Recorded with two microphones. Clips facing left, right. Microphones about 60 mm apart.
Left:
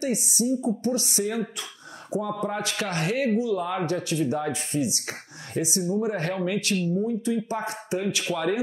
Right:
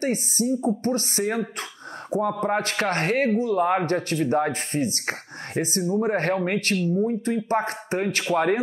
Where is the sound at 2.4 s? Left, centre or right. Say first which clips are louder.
Right 5 dB; right.